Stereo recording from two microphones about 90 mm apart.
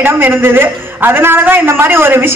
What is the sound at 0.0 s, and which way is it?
A man's voice, 25° right (ahead or behind).